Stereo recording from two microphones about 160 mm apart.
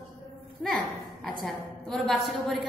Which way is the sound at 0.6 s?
Centre (ahead or behind).